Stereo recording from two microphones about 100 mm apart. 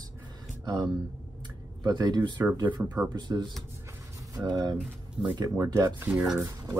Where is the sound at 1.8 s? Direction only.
45° right (ahead or behind).